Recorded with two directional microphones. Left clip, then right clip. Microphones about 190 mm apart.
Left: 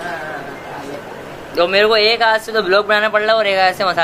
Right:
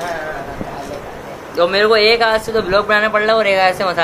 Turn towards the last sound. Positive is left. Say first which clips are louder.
# even
turn(degrees=0)  # may be behind; listen again after turning